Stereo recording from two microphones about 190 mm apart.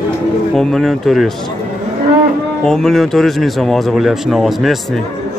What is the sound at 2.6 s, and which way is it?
Speech, 5° left (ahead or behind).